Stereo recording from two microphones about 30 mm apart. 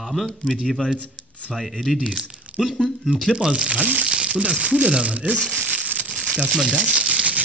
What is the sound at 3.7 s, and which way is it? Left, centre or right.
Speech, right.